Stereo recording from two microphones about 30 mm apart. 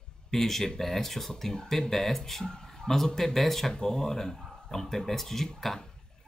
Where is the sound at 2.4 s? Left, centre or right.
Left.